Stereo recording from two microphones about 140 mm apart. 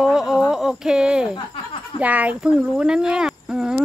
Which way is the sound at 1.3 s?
40° left (ahead or behind).